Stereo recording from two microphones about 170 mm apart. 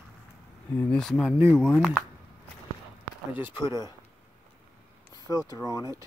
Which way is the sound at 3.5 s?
25° left (ahead or behind).